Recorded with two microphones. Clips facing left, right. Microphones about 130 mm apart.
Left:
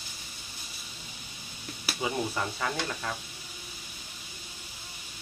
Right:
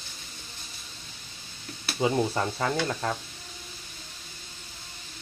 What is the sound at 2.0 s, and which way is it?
Speech, 30° right (ahead or behind).